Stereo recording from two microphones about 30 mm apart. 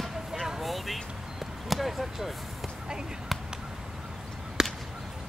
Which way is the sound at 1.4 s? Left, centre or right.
Centre.